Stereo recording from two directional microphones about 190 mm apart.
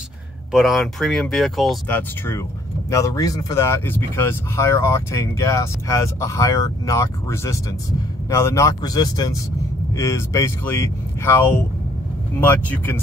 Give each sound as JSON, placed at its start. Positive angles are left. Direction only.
{"t": 0.5, "sound": "speech", "side_deg": 0}